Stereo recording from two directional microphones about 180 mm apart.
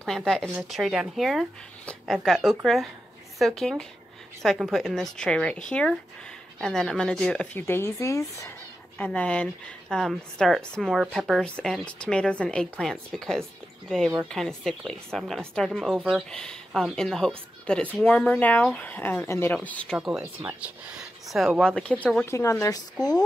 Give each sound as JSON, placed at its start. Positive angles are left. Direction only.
{"t": 0.0, "sound": "a woman's voice", "side_deg": 0}